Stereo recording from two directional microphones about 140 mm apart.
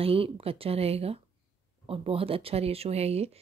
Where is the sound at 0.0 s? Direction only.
45° right (ahead or behind).